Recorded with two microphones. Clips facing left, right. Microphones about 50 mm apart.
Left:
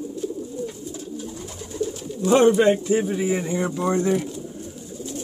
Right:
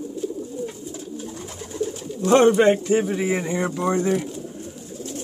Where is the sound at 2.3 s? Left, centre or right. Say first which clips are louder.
Right 1 dB; right.